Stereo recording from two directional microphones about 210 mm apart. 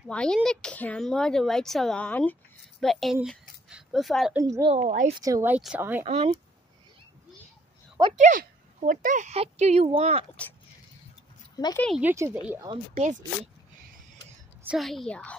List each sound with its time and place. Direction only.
0.0 s speech: 5° left (ahead or behind)
4.4 s speech: 15° right (ahead or behind)
4.7 s speech: 35° right (ahead or behind)
5.2 s speech: 10° right (ahead or behind)
6.0 s speech: 30° right (ahead or behind)
8.2 s speech: 35° right (ahead or behind)
11.6 s speech: 15° left (ahead or behind)
12.0 s speech: 10° right (ahead or behind)
12.6 s speech: 30° right (ahead or behind)
14.6 s speech: 5° right (ahead or behind)